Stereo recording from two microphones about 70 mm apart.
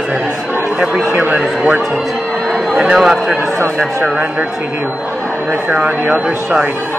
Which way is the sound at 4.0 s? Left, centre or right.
Right.